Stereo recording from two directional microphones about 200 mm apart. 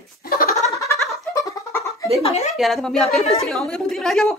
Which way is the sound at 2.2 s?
35° left (ahead or behind).